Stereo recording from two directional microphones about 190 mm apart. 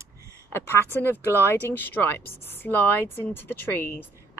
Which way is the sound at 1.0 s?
10° left (ahead or behind).